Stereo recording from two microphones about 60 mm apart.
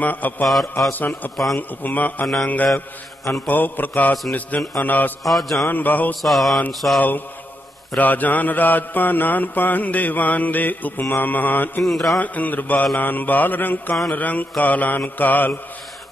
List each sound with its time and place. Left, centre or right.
0.0 s mantra: left
1.3 s mantra: centre
1.6 s mantra: left
5.2 s mantra: centre
5.7 s mantra: left
6.2 s mantra: centre
7.0 s mantra: left
11.8 s mantra: centre
12.2 s mantra: left